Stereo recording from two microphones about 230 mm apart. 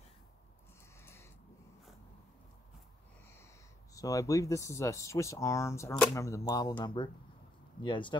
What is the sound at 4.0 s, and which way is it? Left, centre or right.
Speech, centre.